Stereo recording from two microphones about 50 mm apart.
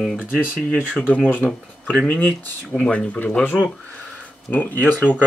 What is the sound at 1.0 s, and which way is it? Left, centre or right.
Speech, left.